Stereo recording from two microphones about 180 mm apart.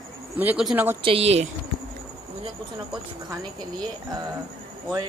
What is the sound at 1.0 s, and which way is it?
Speech, 35° right (ahead or behind).